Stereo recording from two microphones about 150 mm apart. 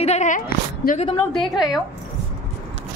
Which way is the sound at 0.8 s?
90° left.